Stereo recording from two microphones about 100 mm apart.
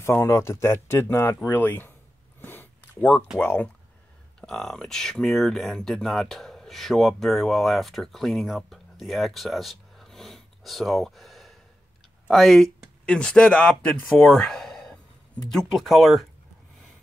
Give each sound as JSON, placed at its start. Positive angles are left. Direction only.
{"t": 0.0, "sound": "speech", "side_deg": 30}
{"t": 2.4, "sound": "a sound", "side_deg": 20}
{"t": 3.3, "sound": "speech", "side_deg": 15}
{"t": 4.4, "sound": "speech", "side_deg": 5}